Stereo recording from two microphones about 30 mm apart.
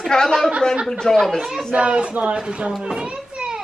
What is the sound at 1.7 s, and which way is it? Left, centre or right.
Speech, right.